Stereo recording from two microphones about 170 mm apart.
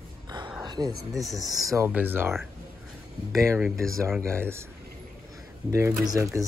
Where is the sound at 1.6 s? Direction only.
15° right (ahead or behind).